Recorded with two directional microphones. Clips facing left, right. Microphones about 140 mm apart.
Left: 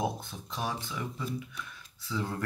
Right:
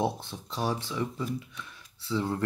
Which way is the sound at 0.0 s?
30° right (ahead or behind).